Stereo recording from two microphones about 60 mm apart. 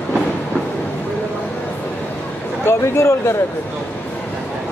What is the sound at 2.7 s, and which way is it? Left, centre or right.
Speech, left.